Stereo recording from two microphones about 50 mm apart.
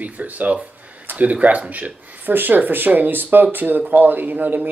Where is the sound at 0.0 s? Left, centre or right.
Right.